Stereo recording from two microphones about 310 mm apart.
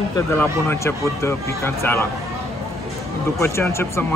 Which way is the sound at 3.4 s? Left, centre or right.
Centre.